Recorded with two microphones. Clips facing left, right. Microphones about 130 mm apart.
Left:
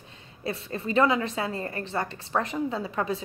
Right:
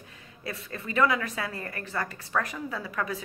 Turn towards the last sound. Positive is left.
turn(degrees=25)  # may be behind; listen again after turning